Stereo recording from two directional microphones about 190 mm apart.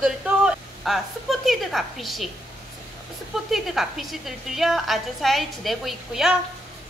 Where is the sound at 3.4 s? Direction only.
Centre (ahead or behind).